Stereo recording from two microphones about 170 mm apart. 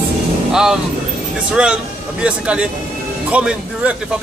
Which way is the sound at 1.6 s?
5° right (ahead or behind).